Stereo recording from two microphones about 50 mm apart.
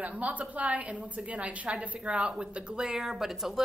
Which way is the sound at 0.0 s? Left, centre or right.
Right.